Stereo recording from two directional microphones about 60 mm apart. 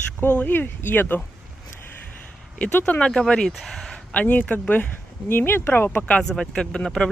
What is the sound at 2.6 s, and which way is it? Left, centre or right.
Speech, left.